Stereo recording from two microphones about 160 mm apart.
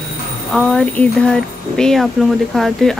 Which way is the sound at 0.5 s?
Centre (ahead or behind).